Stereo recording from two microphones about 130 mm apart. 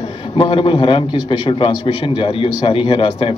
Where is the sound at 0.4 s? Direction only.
45° left (ahead or behind).